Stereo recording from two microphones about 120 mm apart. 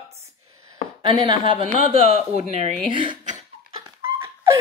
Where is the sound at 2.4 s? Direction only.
70° right (ahead or behind).